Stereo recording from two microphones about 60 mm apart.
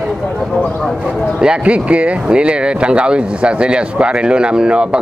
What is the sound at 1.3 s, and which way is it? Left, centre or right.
Speech, centre.